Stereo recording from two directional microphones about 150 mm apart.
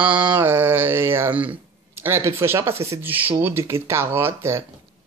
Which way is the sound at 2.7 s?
40° right (ahead or behind).